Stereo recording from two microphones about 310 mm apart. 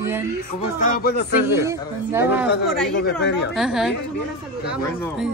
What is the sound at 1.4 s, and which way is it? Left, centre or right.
A man's voice, centre.